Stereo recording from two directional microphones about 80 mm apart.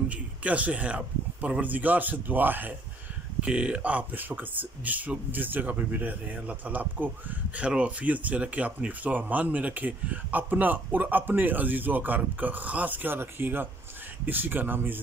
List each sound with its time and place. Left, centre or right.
0.1 s speech: centre
3.3 s speech: centre